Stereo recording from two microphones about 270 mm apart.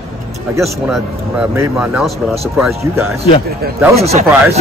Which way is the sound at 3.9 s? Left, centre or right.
Right.